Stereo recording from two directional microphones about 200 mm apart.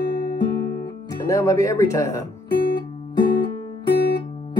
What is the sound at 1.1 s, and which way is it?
Speech, 15° left (ahead or behind).